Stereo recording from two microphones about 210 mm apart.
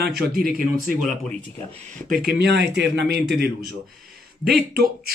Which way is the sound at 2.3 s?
55° right (ahead or behind).